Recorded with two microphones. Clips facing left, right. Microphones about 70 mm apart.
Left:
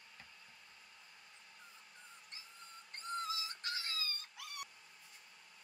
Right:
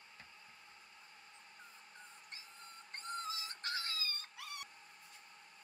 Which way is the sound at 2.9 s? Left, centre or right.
Right.